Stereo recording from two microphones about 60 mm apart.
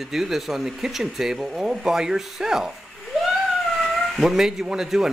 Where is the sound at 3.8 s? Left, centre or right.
Centre.